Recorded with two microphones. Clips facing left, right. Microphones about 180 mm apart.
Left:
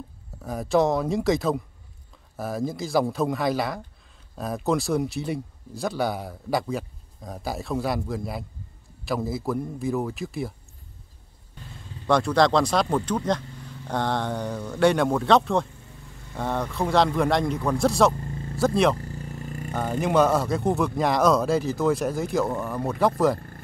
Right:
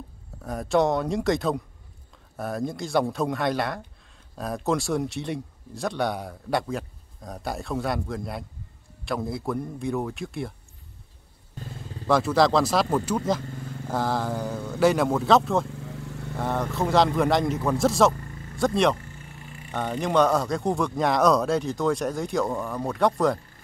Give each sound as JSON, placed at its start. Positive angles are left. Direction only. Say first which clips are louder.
{"t": 0.4, "sound": "a man's voice", "louder": "left 1 dB", "side_deg": 0}
{"t": 12.1, "sound": "a man's voice", "louder": "even", "side_deg": -5}
{"t": 15.7, "sound": "vehicle", "louder": "right 11 dB", "side_deg": -85}
{"t": 16.3, "sound": "a man's voice", "louder": "even", "side_deg": 0}
{"t": 18.9, "sound": "vehicle", "louder": "left 8 dB", "side_deg": 35}
{"t": 19.7, "sound": "a man's voice", "louder": "left 1 dB", "side_deg": 0}